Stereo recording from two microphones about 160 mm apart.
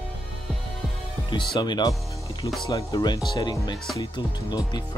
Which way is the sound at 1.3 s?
30° left (ahead or behind).